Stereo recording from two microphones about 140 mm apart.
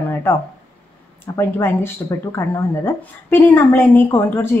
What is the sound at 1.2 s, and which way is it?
Speech, 15° left (ahead or behind).